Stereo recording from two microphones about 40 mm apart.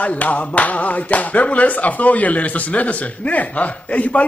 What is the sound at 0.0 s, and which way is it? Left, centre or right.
Speech, left.